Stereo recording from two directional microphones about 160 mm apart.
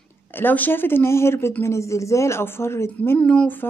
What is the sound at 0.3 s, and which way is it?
Speech, 10° left (ahead or behind).